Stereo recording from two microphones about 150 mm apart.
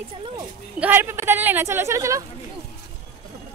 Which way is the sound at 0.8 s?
15° right (ahead or behind).